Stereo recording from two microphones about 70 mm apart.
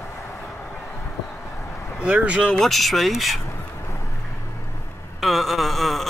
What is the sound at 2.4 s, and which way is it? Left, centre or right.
Speech, centre.